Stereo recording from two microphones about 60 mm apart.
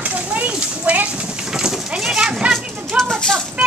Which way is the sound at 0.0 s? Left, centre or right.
Right.